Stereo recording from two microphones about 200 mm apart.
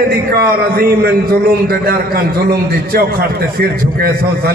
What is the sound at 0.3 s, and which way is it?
Speech, 50° right (ahead or behind).